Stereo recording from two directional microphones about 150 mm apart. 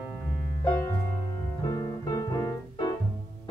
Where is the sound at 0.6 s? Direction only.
20° left (ahead or behind).